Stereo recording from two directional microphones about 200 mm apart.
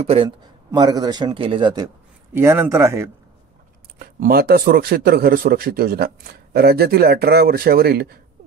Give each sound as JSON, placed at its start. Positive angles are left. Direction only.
{"t": 0.0, "sound": "a man's voice", "side_deg": -30}
{"t": 2.3, "sound": "speech", "side_deg": -10}
{"t": 4.0, "sound": "speech", "side_deg": -50}